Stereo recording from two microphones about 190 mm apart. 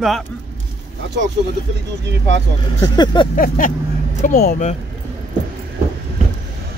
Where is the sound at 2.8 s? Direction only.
20° left (ahead or behind).